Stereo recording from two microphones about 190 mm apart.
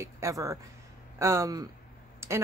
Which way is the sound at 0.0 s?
15° right (ahead or behind).